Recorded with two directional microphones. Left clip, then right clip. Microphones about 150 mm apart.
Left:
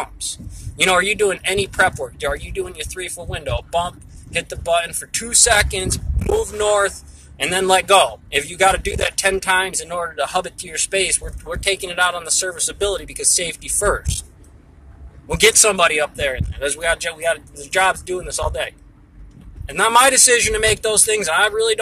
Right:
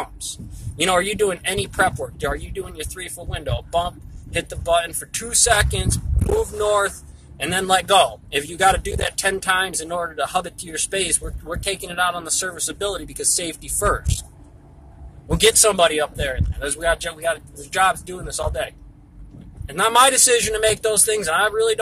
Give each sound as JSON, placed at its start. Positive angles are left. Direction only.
{"t": 0.7, "sound": "a man's voice", "side_deg": -5}
{"t": 15.2, "sound": "a man's voice", "side_deg": -10}